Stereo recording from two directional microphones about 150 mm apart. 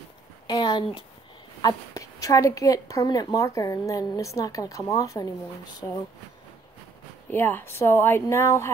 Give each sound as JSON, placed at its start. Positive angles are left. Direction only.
{"t": 0.5, "sound": "speech", "side_deg": 30}
{"t": 7.2, "sound": "a woman's voice", "side_deg": 15}